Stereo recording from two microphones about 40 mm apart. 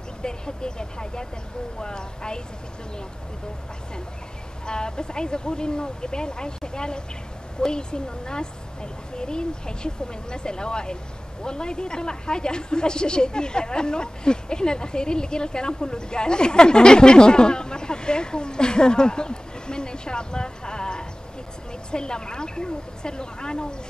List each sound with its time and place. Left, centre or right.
0.2 s speech: left
4.6 s speech: left